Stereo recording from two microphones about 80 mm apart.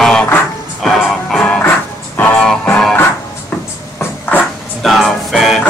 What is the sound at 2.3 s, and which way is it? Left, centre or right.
Music, centre.